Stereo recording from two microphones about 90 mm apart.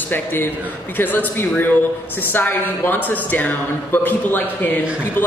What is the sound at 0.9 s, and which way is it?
A man's voice, 20° left (ahead or behind).